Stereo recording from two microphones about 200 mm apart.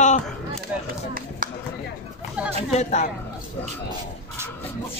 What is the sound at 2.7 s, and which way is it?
Speech, 35° left (ahead or behind).